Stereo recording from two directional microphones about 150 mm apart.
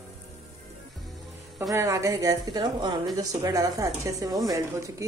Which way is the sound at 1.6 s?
20° right (ahead or behind).